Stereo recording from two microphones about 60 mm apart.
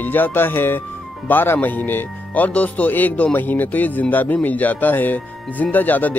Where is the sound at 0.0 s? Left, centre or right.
Left.